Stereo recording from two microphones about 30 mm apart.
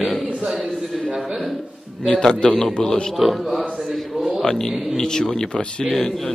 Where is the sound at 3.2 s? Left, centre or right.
Centre.